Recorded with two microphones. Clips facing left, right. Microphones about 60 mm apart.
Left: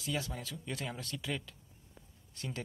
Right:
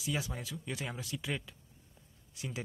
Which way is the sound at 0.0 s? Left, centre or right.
Centre.